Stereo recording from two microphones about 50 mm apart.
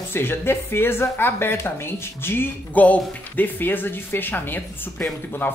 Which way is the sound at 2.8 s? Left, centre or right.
Left.